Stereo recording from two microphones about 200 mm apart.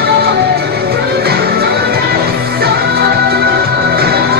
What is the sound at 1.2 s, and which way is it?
Music, 50° right (ahead or behind).